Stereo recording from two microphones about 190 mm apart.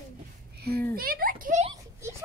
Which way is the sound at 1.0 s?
50° right (ahead or behind).